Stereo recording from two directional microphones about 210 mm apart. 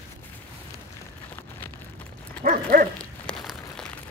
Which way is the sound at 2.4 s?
45° right (ahead or behind).